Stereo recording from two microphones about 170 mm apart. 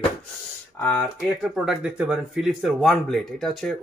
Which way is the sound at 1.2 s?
5° right (ahead or behind).